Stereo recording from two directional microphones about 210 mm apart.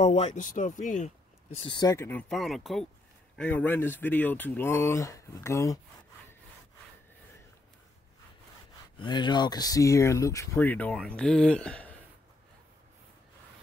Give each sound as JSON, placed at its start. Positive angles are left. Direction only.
{"t": 0.0, "sound": "speech", "side_deg": 35}
{"t": 1.6, "sound": "speech", "side_deg": 20}
{"t": 9.0, "sound": "speech", "side_deg": 20}